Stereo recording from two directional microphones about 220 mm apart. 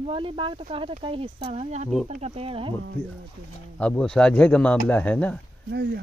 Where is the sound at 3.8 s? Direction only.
5° left (ahead or behind).